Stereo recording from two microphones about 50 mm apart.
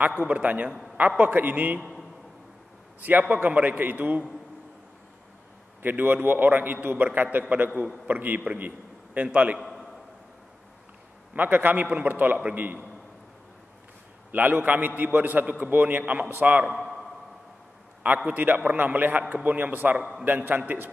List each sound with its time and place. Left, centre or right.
0.3 s a man's voice: right
3.0 s a man's voice: right
5.8 s a man's voice: right
11.3 s a man's voice: right
14.3 s a man's voice: right
16.7 s a sound: centre
18.0 s a man's voice: right